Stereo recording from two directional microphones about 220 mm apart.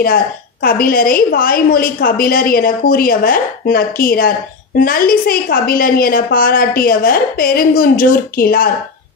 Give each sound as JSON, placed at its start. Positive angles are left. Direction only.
{"t": 0.0, "sound": "a woman's voice", "side_deg": 40}